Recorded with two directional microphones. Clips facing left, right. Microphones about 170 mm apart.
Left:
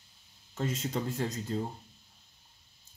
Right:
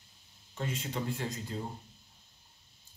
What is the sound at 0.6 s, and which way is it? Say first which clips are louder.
Speech: left 3 dB; 40° left (ahead or behind).